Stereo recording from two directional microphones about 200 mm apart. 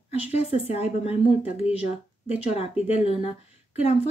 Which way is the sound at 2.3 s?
30° left (ahead or behind).